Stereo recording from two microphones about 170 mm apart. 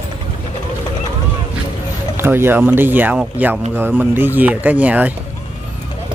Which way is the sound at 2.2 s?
15° right (ahead or behind).